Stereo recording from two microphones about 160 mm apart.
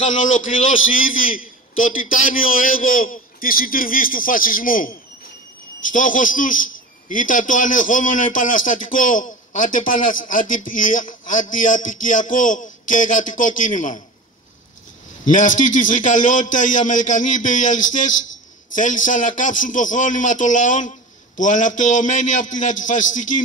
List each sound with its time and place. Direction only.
0.2 s a man's voice: 55° left (ahead or behind)
15.2 s a man's voice: 55° left (ahead or behind)